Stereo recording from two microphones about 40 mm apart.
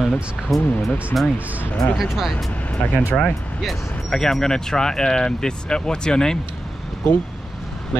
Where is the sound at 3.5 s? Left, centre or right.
Centre.